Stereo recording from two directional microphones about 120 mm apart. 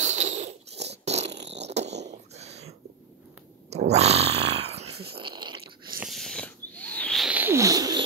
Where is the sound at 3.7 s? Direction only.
65° right (ahead or behind); by 5.6 s 40° right (ahead or behind).